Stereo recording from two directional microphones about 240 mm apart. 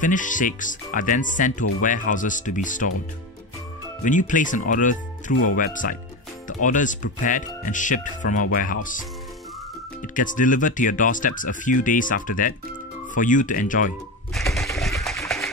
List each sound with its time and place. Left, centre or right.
0.0 s speech: left
4.0 s speech: left
10.1 s speech: left
14.3 s bird: centre
14.8 s pigeon: centre